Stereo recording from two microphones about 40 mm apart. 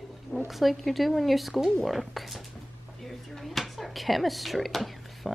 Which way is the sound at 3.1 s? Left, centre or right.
Centre.